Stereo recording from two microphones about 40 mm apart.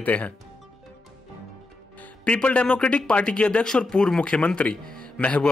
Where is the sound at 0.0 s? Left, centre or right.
Left.